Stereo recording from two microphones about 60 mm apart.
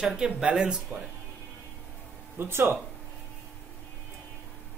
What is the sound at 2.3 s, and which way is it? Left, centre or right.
Speech, right.